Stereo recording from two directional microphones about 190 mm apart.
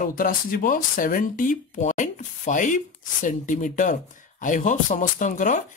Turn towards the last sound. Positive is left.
turn(degrees=40)  # may be behind; listen again after turning